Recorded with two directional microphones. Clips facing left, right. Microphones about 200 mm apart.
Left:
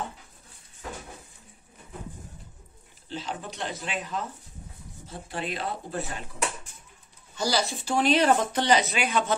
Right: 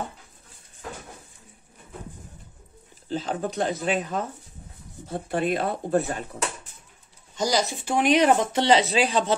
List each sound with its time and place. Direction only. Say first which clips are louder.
3.1 s speech: right 7 dB; 45° right (ahead or behind)
7.3 s speech: right 3 dB; 20° right (ahead or behind)